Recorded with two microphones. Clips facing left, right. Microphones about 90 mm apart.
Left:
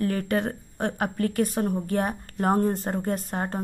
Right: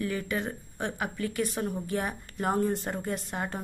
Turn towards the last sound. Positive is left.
turn(degrees=40)  # may be behind; listen again after turning